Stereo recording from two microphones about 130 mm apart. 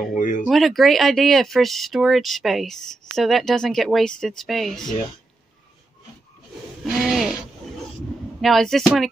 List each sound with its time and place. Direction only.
0.0 s speech: 90° left
0.5 s speech: centre (ahead or behind)
6.8 s a sound: 5° right (ahead or behind)
8.4 s speech: centre (ahead or behind)